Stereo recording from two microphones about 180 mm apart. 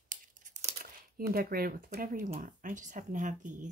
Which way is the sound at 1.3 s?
55° right (ahead or behind).